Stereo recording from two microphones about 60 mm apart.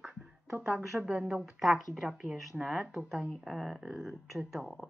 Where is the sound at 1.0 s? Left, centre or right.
Centre.